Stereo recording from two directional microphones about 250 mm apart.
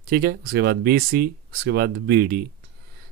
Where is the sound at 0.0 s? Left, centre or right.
Right.